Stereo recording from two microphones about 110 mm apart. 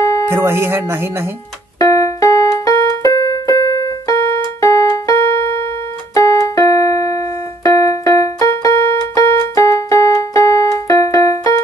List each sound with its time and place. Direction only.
0.3 s speech: 20° right (ahead or behind)
1.8 s keyboard: 30° left (ahead or behind)
7.6 s music: 30° left (ahead or behind)